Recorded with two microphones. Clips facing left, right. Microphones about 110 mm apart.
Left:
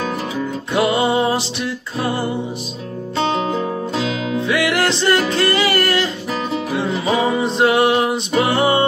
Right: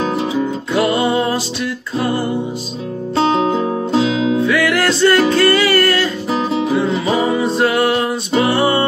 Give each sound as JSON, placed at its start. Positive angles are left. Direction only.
{"t": 0.7, "sound": "music", "side_deg": 20}
{"t": 4.2, "sound": "music", "side_deg": -25}
{"t": 4.5, "sound": "music", "side_deg": 20}
{"t": 6.6, "sound": "music", "side_deg": -25}
{"t": 7.3, "sound": "music", "side_deg": 20}